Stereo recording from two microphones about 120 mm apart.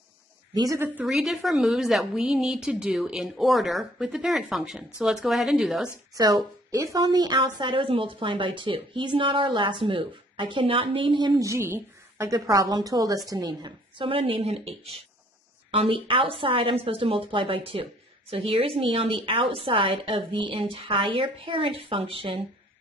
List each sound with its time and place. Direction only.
0.6 s a woman's voice: 25° right (ahead or behind)
1.0 s a woman's voice: 5° right (ahead or behind)
6.1 s a woman's voice: 30° right (ahead or behind)
11.4 s a woman's voice: 20° right (ahead or behind); by 22.4 s 50° right (ahead or behind)